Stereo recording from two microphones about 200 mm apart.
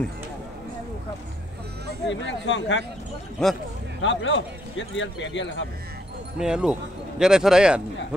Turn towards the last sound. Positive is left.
turn(degrees=-5)  # may be behind; listen again after turning